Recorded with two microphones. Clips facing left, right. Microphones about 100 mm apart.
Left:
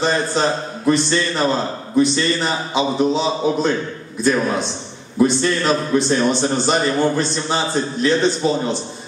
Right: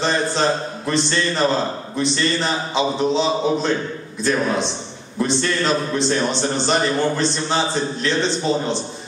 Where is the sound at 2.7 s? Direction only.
5° left (ahead or behind).